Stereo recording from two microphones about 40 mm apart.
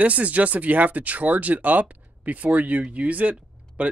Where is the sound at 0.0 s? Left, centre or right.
Right.